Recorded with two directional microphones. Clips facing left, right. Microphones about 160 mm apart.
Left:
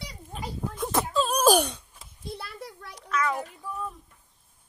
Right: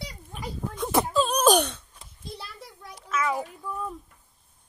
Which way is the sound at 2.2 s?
60° left (ahead or behind).